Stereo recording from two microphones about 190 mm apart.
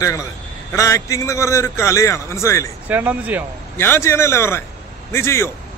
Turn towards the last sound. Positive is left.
turn(degrees=15)  # may be behind; listen again after turning